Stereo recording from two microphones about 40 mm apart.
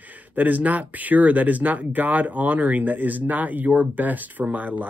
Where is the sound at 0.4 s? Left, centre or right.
Right.